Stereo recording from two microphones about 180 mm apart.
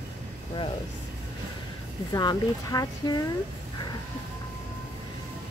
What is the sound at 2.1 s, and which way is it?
Speech, 20° left (ahead or behind).